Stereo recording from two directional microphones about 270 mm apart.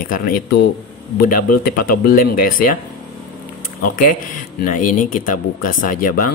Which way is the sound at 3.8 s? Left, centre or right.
Left.